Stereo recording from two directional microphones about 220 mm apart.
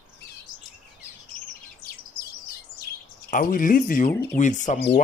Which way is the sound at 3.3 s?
40° left (ahead or behind).